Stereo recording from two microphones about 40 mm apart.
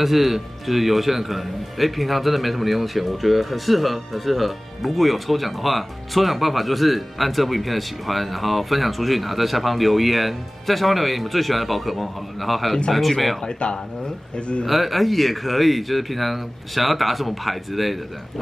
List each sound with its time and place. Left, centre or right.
0.0 s a man's voice: centre
14.3 s a man's voice: left
14.7 s a man's voice: centre